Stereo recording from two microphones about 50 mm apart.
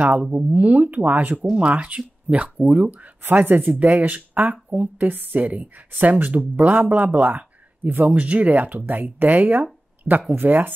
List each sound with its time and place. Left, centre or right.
0.3 s a woman's voice: right
1.5 s a woman's voice: centre; by 10.7 s right